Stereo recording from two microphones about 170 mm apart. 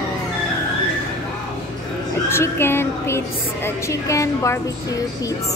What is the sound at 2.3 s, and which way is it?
A woman's voice, 15° left (ahead or behind).